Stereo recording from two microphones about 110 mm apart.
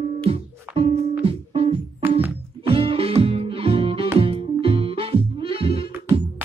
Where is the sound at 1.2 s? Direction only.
60° right (ahead or behind).